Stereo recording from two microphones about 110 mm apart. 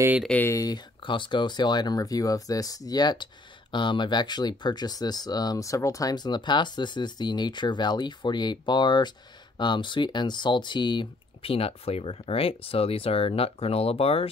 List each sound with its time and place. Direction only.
0.5 s speech: 35° left (ahead or behind); by 14.3 s 60° left (ahead or behind)